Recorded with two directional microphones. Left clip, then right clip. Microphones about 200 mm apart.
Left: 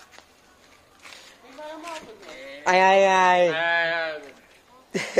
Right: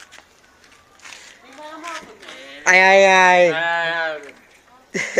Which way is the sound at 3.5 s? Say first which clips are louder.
Right 3 dB; 60° right (ahead or behind).